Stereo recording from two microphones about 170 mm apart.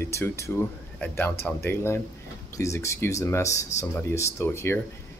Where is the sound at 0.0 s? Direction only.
15° left (ahead or behind).